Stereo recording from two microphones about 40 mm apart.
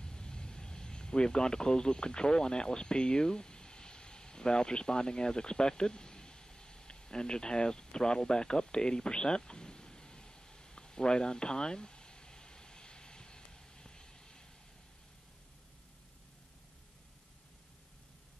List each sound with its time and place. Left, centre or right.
0.0 s vehicle: centre